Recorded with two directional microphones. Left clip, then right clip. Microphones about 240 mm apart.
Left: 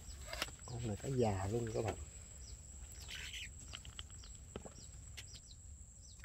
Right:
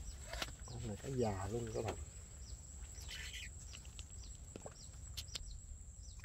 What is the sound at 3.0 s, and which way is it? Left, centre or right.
Bird, left.